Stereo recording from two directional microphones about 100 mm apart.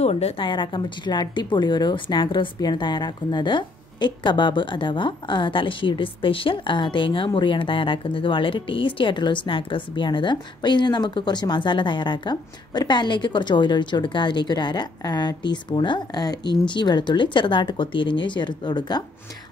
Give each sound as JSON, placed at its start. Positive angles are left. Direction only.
{"t": 0.0, "sound": "a woman's voice", "side_deg": 90}
{"t": 0.5, "sound": "speech", "side_deg": 50}